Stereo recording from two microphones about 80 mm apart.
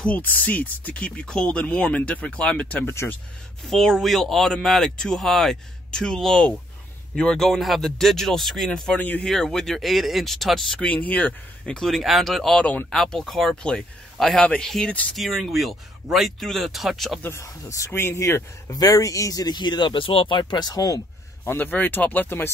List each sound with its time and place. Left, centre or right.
0.0 s speech: centre
3.6 s speech: centre
9.0 s speech: left
9.3 s speech: centre
10.8 s speech: centre
11.9 s speech: centre
12.5 s speech: centre
12.9 s speech: centre
15.1 s speech: centre
17.2 s speech: left
21.5 s speech: left